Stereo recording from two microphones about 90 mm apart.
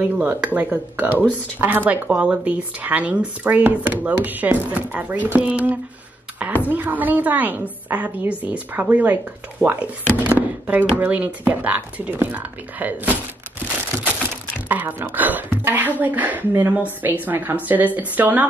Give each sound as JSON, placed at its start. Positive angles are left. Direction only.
{"t": 0.0, "sound": "speech", "side_deg": -15}
{"t": 14.7, "sound": "speech", "side_deg": -20}